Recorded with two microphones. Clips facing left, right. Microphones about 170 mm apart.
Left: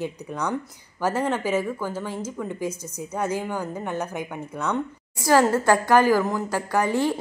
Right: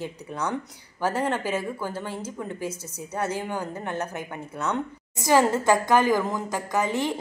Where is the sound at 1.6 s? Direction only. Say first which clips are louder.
Left 3 dB; 10° right (ahead or behind).